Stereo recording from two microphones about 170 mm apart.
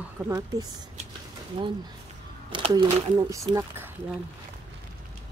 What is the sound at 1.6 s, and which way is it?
Speech, 30° right (ahead or behind).